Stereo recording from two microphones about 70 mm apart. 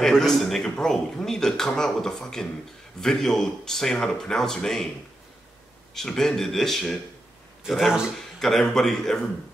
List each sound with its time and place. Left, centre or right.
0.2 s speech: centre
5.9 s speech: centre
8.4 s speech: centre